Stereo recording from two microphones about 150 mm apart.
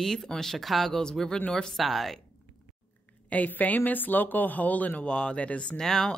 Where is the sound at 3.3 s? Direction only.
10° left (ahead or behind).